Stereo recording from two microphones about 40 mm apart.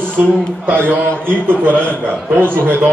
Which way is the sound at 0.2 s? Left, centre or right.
Right.